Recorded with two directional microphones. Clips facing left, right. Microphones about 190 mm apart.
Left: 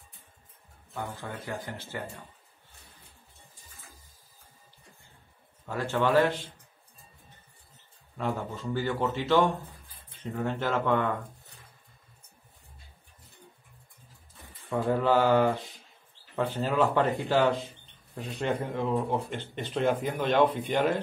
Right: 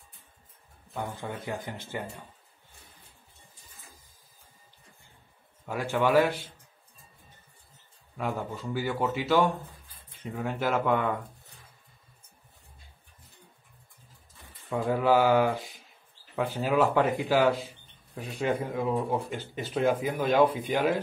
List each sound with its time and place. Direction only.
0.9 s speech: 20° right (ahead or behind)
5.7 s speech: 10° right (ahead or behind)
8.2 s speech: 10° right (ahead or behind)
14.7 s speech: 10° right (ahead or behind)